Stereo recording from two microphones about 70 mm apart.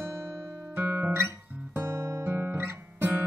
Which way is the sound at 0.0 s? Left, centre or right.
Right.